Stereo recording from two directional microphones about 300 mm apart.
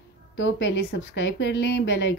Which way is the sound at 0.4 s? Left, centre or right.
Left.